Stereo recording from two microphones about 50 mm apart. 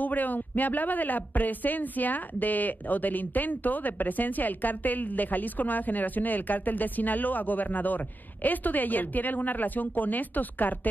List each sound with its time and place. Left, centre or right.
0.0 s speech: left